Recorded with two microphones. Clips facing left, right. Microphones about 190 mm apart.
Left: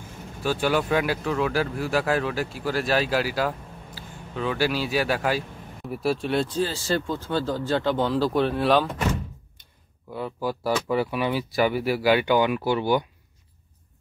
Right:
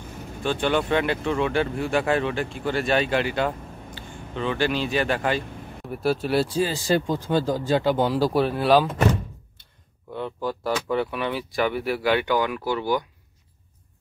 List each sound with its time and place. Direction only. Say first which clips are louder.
0.4 s speech: even; 5° left (ahead or behind)
10.1 s speech: even; 5° left (ahead or behind)
12.4 s speech: left 3 dB; 20° left (ahead or behind)